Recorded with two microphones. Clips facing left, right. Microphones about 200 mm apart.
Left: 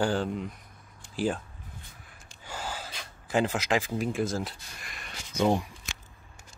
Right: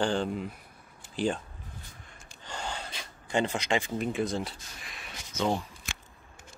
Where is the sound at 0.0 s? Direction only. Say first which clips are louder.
Left 1 dB; 5° left (ahead or behind).